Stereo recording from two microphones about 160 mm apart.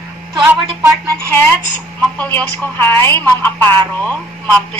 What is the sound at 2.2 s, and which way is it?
A woman's voice, 10° left (ahead or behind).